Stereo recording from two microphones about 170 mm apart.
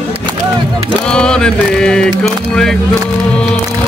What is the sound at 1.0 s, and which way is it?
Music, 5° left (ahead or behind).